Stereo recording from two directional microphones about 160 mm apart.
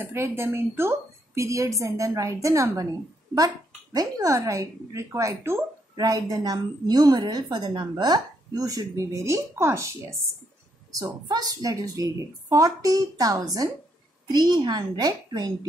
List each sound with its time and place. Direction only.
0.0 s speech: 15° right (ahead or behind)